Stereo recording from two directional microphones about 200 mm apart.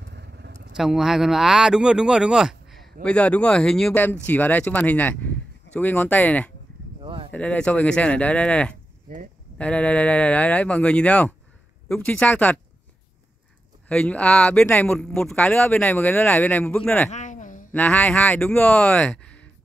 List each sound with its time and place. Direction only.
0.0 s vehicle: 55° right (ahead or behind)
0.7 s speech: centre (ahead or behind)
7.0 s a sound: 25° right (ahead or behind)
7.3 s speech: 5° left (ahead or behind)
13.8 s speech: 5° left (ahead or behind)
17.1 s a sound: 40° left (ahead or behind)
17.7 s speech: 10° left (ahead or behind)